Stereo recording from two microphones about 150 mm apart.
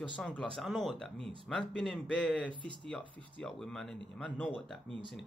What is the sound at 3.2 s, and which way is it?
Speech, 5° left (ahead or behind).